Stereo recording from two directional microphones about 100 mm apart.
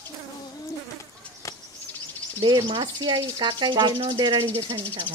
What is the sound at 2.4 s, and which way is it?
Speech, 50° right (ahead or behind).